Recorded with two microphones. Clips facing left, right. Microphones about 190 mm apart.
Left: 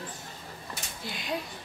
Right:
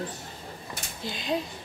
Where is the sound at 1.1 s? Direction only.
25° right (ahead or behind).